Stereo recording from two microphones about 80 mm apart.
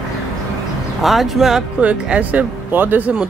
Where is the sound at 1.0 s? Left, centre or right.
Centre.